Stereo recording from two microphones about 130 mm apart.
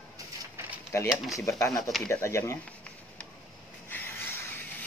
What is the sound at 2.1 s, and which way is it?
Speech, 20° left (ahead or behind).